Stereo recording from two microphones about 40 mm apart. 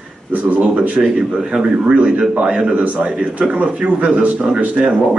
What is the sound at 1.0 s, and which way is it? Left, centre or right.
A man's voice, centre.